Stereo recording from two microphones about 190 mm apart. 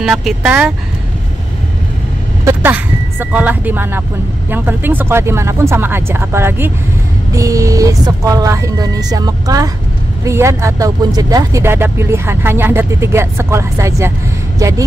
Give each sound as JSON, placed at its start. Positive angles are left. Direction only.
{"t": 0.0, "sound": "speech", "side_deg": 0}
{"t": 2.4, "sound": "speech", "side_deg": -10}